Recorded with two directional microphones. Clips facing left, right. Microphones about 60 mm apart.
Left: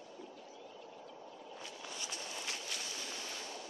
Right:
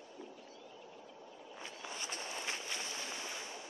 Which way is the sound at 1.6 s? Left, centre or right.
Right.